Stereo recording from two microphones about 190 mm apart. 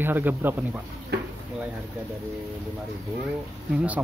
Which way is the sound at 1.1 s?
60° right (ahead or behind).